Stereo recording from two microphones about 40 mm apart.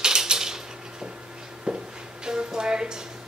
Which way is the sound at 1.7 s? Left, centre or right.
Right.